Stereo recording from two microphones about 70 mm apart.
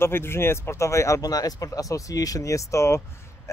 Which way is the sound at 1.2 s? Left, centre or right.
Left.